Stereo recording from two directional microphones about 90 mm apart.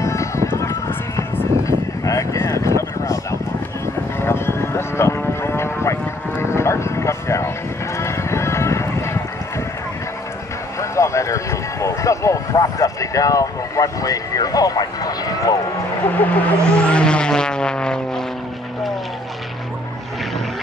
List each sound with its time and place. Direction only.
0.0 s vehicle: 35° left (ahead or behind)
3.8 s a sound: 30° left (ahead or behind)
8.0 s music: 30° left (ahead or behind)
10.8 s vehicle: 35° left (ahead or behind)
16.1 s vehicle: 20° left (ahead or behind)